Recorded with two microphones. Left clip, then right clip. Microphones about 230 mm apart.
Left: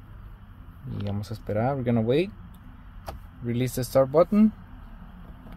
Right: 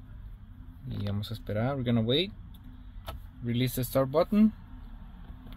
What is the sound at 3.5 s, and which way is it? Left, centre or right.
Speech, left.